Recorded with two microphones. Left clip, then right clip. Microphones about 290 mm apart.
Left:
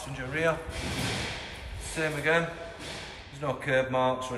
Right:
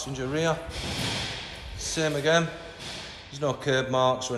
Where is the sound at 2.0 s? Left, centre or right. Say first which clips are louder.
Right 3 dB; centre.